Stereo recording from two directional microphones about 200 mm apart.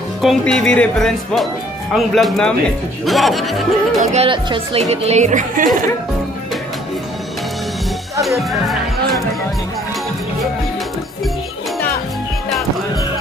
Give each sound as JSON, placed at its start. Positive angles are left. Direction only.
{"t": 0.2, "sound": "speech", "side_deg": 0}
{"t": 4.1, "sound": "a woman's voice", "side_deg": -30}
{"t": 8.2, "sound": "speech", "side_deg": 0}